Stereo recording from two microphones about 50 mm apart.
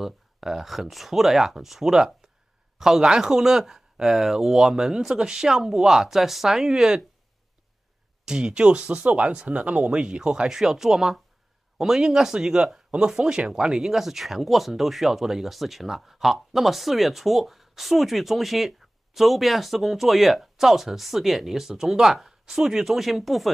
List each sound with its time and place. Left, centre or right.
0.0 s speech: centre
8.3 s speech: centre